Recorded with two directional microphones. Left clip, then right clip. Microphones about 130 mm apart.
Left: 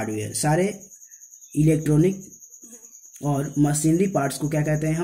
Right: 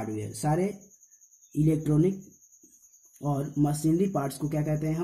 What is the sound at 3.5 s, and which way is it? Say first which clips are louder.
Speech: left 5 dB; 15° right (ahead or behind).